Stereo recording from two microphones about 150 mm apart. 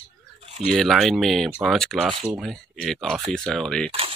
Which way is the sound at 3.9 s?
40° right (ahead or behind).